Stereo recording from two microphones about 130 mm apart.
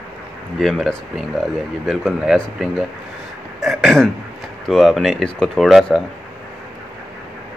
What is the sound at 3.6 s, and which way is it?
Throat clearing, centre (ahead or behind).